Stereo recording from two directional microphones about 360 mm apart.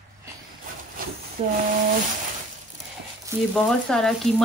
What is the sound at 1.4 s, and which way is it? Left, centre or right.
Speech, centre.